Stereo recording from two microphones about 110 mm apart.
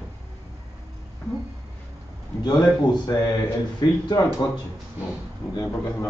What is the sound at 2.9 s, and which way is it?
Speech, 35° left (ahead or behind).